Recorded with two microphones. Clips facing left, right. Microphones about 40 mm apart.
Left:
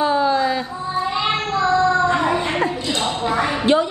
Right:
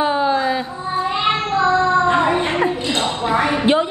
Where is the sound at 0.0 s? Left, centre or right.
Right.